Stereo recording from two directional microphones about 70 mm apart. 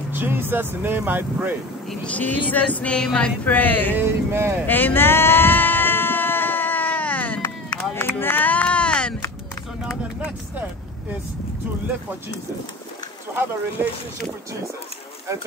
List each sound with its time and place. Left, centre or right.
0.1 s speech: right
2.0 s speech: left
3.9 s speech: right
4.6 s a sound: left
7.9 s chop: left; by 9.1 s centre
13.3 s speech: right